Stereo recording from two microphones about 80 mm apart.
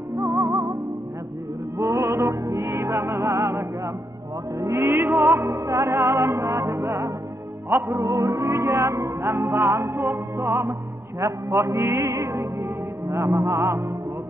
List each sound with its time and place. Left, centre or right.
0.3 s music: right
1.8 s music: right
13.2 s music: right
13.5 s music: right